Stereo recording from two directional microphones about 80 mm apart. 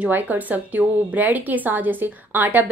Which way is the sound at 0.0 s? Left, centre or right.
Right.